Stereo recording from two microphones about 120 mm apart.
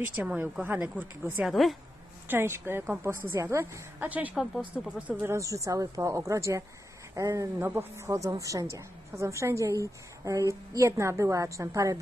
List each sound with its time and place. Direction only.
0.0 s speech: 15° right (ahead or behind)
1.4 s speech: centre (ahead or behind)
2.2 s a woman's voice: 20° right (ahead or behind)
5.2 s a woman's voice: 25° right (ahead or behind)